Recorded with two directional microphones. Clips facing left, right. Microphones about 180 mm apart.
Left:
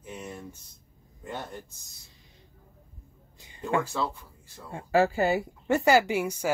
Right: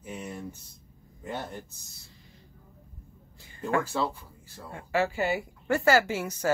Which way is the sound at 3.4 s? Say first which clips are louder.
Even; 20° left (ahead or behind).